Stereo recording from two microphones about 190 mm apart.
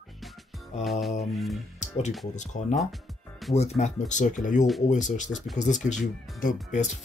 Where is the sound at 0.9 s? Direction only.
Centre (ahead or behind).